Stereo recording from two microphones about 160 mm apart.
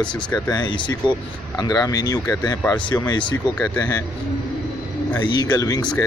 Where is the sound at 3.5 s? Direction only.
10° left (ahead or behind).